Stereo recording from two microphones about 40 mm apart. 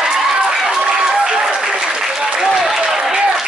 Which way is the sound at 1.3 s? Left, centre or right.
Right.